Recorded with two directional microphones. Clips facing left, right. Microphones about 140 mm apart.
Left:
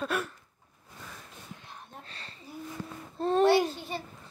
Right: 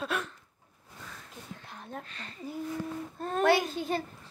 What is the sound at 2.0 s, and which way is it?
A child's voice, 30° left (ahead or behind).